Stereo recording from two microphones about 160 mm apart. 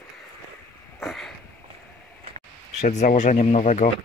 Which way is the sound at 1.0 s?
Centre (ahead or behind).